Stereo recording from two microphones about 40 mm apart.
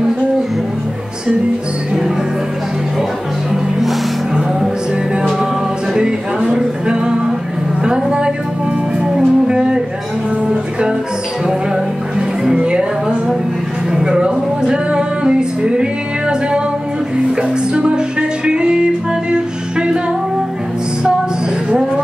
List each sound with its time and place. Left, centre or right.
5.9 s music: centre
7.8 s a sound: right
9.0 s music: centre